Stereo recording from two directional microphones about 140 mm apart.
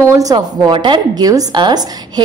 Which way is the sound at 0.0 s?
25° right (ahead or behind).